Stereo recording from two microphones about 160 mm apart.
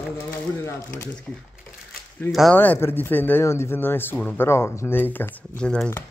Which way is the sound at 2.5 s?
10° left (ahead or behind).